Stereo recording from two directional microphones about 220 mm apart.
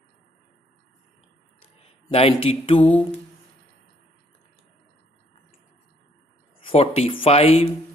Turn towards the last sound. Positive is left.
turn(degrees=25)  # may be behind; listen again after turning